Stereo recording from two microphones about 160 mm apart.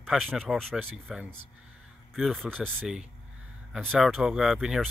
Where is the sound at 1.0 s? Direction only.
10° right (ahead or behind).